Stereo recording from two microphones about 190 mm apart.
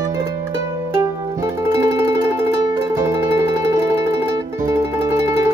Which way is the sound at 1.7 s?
15° right (ahead or behind).